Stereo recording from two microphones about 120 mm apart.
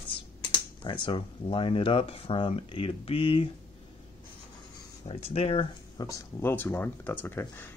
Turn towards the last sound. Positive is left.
turn(degrees=20)  # may be behind; listen again after turning